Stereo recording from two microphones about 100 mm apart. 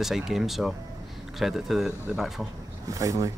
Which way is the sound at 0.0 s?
5° right (ahead or behind).